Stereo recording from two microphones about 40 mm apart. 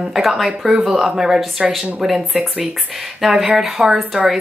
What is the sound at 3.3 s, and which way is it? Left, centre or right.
Speech, centre.